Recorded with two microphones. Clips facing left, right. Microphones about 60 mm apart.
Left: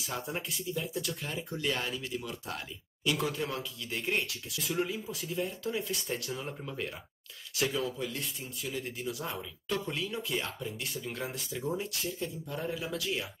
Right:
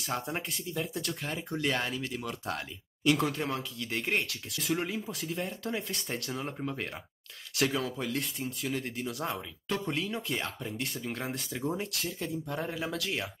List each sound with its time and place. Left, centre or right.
0.0 s speech: right
1.7 s speech: right
2.0 s speech: right
3.3 s speech: right
7.5 s speech: right
8.6 s speech: right
11.9 s speech: right
12.5 s speech: right